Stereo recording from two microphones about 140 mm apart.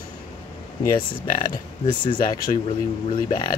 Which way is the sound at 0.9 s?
35° left (ahead or behind).